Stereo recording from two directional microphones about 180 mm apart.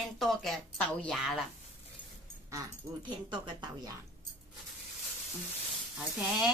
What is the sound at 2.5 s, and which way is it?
Speech, 20° right (ahead or behind).